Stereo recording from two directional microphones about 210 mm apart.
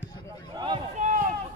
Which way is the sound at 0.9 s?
35° right (ahead or behind).